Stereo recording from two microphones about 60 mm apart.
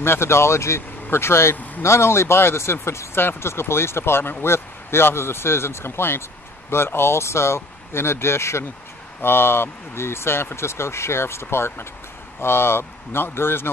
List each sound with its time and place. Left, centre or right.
0.0 s speech: left